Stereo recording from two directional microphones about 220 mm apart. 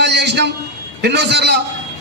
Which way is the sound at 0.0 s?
50° right (ahead or behind).